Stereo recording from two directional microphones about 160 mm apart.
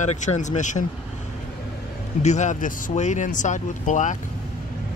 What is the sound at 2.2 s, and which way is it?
Speech, 45° left (ahead or behind).